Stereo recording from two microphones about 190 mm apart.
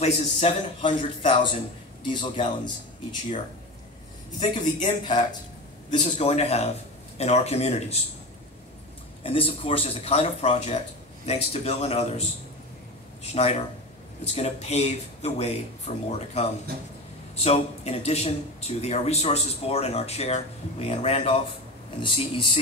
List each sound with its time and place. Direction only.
0.0 s speech: 35° left (ahead or behind)
4.8 s speech: 25° left (ahead or behind)
5.9 s speech: 35° left (ahead or behind)
9.2 s speech: 30° left (ahead or behind)
13.3 s speech: 35° left (ahead or behind)